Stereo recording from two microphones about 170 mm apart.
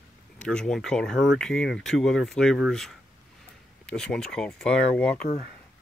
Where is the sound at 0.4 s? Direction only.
5° left (ahead or behind).